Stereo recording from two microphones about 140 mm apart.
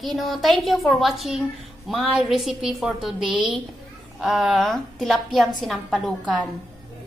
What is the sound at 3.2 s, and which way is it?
Speech, 35° right (ahead or behind).